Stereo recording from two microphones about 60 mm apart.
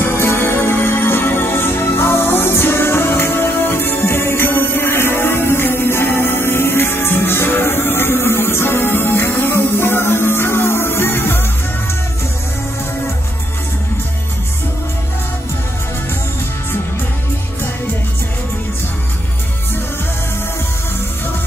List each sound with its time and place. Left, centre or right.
0.0 s music: left